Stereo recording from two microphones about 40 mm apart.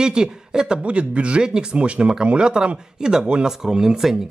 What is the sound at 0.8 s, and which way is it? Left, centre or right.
Speech, right.